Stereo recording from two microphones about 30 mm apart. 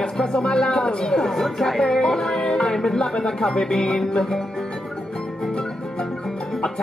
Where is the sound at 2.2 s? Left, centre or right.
Centre.